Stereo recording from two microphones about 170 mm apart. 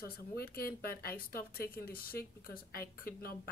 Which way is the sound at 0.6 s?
60° left (ahead or behind).